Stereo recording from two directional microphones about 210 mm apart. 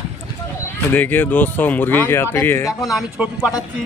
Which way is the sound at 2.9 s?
5° right (ahead or behind).